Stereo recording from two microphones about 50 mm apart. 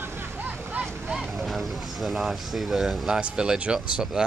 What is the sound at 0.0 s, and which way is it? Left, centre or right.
Vehicle, right.